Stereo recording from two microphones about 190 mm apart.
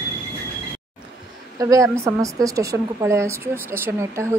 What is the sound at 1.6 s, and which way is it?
Speech, 15° right (ahead or behind).